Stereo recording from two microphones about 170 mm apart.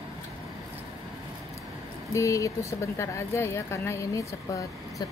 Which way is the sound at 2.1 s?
20° left (ahead or behind).